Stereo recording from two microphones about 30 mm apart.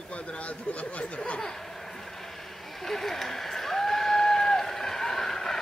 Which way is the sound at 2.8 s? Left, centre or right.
Centre.